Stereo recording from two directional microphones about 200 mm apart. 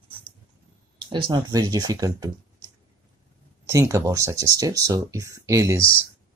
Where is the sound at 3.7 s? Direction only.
15° right (ahead or behind).